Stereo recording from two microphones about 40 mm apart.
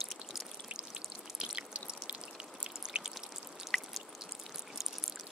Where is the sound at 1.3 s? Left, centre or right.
Right.